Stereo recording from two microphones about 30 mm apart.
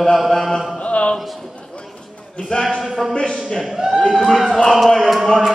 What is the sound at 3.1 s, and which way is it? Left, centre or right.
A man's voice, left.